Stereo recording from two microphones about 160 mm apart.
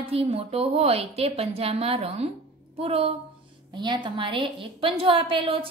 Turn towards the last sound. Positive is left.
turn(degrees=-35)  # may be behind; listen again after turning